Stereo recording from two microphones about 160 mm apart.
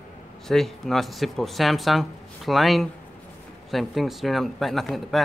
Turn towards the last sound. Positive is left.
turn(degrees=0)  # may be behind; listen again after turning